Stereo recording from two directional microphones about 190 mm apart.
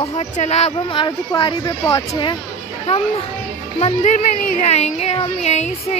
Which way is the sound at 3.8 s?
40° left (ahead or behind).